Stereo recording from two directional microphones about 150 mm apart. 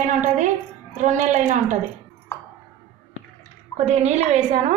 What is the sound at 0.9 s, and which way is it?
Speech, 55° right (ahead or behind).